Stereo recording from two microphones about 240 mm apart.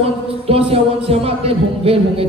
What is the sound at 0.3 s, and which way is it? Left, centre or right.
Speech, right.